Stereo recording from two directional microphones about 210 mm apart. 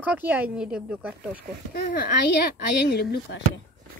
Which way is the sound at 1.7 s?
45° left (ahead or behind).